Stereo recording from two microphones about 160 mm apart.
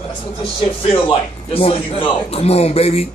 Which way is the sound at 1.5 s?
35° left (ahead or behind).